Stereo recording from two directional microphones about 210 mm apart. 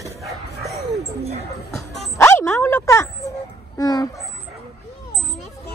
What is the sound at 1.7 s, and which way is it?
Music, 5° left (ahead or behind).